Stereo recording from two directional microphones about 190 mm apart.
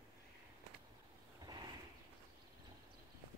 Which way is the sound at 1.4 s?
20° right (ahead or behind).